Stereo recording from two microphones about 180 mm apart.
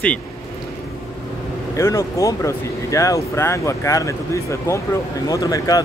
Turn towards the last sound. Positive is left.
turn(degrees=20)  # may be behind; listen again after turning